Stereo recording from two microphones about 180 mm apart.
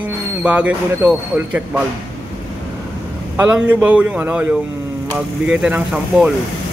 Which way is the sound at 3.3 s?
10° right (ahead or behind).